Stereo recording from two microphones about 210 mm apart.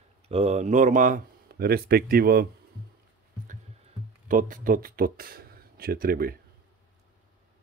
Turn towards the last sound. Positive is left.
turn(degrees=-45)  # may be behind; listen again after turning